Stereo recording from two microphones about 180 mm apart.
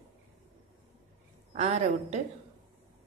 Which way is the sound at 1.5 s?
35° right (ahead or behind).